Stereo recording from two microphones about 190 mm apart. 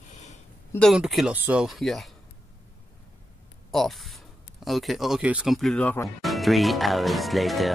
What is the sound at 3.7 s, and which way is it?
Speech, centre (ahead or behind).